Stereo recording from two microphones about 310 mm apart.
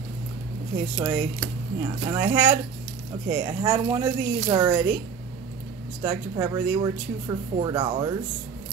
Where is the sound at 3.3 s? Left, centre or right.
Centre.